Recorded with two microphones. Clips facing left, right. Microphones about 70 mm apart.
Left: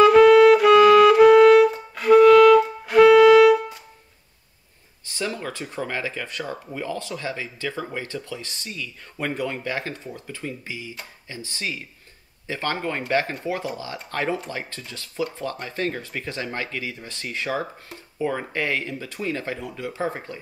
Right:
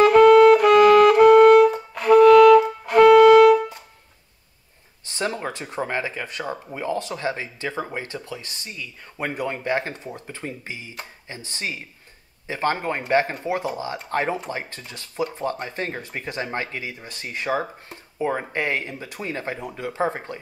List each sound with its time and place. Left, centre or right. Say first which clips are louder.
0.0 s music: even; right
5.1 s speech: right 2 dB; right